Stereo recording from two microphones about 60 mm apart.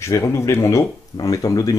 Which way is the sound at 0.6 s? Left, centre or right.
Left.